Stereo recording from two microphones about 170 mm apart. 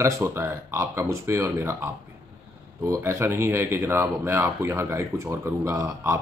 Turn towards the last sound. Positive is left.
turn(degrees=-15)  # may be behind; listen again after turning